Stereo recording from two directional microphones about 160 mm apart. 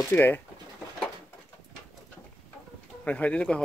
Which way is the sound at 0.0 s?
15° left (ahead or behind).